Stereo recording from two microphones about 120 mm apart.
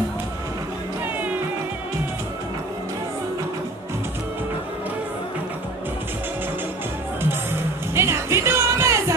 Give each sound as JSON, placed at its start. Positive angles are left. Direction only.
{"t": 7.9, "sound": "music", "side_deg": -20}